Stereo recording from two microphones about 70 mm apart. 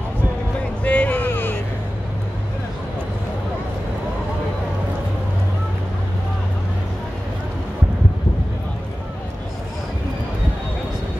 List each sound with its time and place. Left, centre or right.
0.8 s music: left